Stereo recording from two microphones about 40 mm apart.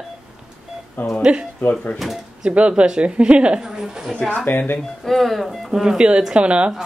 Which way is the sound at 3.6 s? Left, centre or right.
Centre.